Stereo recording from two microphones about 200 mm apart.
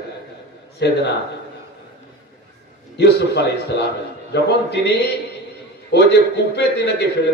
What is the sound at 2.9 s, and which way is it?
A man's voice, 55° left (ahead or behind).